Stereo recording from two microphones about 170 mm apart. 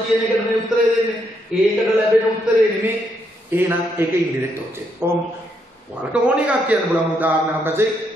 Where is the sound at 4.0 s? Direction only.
15° right (ahead or behind).